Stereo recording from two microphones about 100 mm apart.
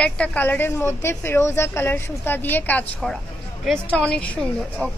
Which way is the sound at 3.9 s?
10° left (ahead or behind).